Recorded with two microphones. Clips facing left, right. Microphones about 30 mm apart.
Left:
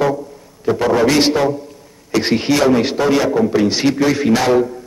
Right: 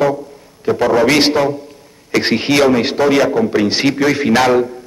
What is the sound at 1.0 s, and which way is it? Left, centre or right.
A man's voice, right.